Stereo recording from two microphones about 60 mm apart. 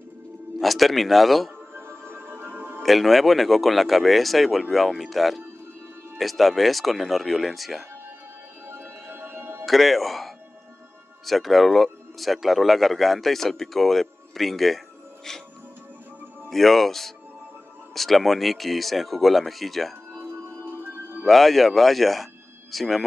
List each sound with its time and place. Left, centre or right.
0.6 s speech: centre
1.7 s music: right
2.8 s speech: centre
8.6 s music: right
9.7 s speech: centre
16.4 s speech: centre
20.2 s music: right
21.3 s speech: centre